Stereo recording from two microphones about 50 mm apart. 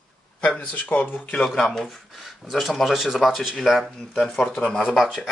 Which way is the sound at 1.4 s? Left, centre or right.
Centre.